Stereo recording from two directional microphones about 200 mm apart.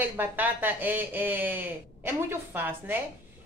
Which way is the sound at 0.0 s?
10° right (ahead or behind).